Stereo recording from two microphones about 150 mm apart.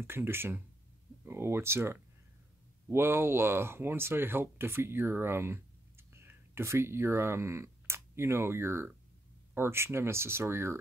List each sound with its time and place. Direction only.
0.0 s speech: 15° right (ahead or behind)